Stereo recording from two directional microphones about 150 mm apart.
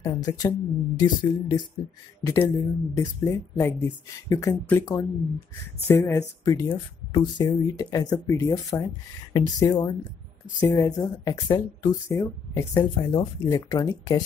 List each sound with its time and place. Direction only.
0.0 s speech: 25° left (ahead or behind)